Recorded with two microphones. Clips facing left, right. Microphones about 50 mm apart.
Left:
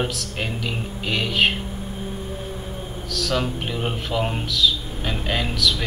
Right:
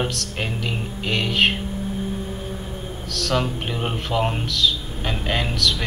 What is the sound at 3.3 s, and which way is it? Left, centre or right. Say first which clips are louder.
A man's voice: right 2 dB; centre.